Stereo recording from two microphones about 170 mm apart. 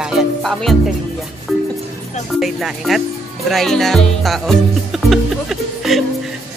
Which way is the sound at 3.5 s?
Centre (ahead or behind).